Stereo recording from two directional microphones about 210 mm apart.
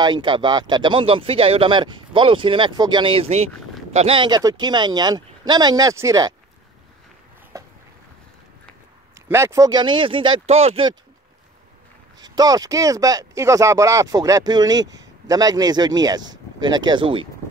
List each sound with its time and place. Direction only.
0.0 s speech: 20° right (ahead or behind)
9.3 s speech: 15° right (ahead or behind)
12.2 s speech: 20° right (ahead or behind)